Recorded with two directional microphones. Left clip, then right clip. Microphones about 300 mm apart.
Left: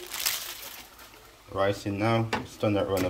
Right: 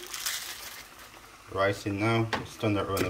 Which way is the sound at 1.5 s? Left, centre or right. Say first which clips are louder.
Even; centre.